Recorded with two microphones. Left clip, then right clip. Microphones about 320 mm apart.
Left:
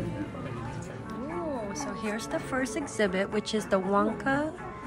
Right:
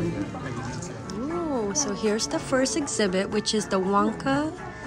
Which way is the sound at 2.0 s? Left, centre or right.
Centre.